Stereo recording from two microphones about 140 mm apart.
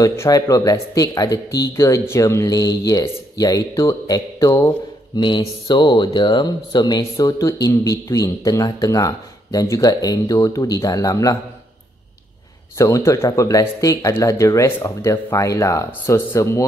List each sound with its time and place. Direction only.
0.0 s speech: 20° left (ahead or behind)
12.7 s speech: 20° left (ahead or behind)